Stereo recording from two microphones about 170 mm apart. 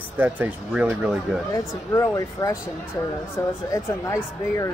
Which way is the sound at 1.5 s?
20° left (ahead or behind).